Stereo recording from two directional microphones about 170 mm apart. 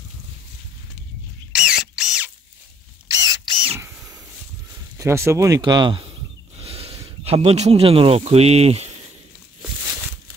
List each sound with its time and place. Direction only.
1.5 s drill: 5° right (ahead or behind)
3.1 s camera: 20° right (ahead or behind)
4.9 s speech: 15° right (ahead or behind); by 8.9 s 35° right (ahead or behind)